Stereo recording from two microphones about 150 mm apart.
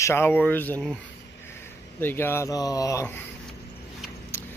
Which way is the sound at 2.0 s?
15° left (ahead or behind).